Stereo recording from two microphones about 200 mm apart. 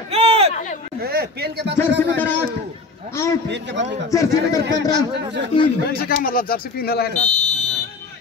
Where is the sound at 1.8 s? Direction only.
10° left (ahead or behind).